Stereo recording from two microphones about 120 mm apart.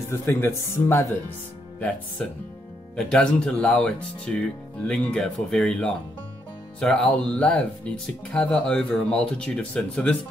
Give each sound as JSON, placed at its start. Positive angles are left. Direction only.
{"t": 0.1, "sound": "speech", "side_deg": 20}